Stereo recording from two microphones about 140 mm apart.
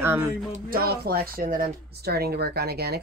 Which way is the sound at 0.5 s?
90° right.